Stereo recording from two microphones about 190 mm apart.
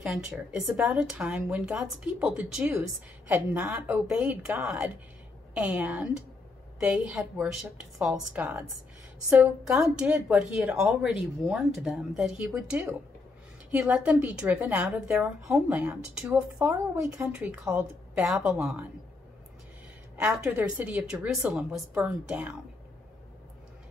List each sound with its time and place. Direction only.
0.0 s a woman's voice: 5° right (ahead or behind)
20.2 s a woman's voice: 5° right (ahead or behind)